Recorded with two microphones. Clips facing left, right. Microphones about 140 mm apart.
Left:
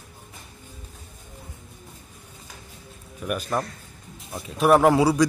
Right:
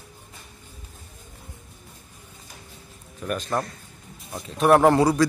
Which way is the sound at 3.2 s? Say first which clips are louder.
Even; 10° left (ahead or behind).